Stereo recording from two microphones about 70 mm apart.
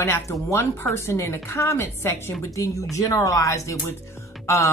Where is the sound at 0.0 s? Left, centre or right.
Left.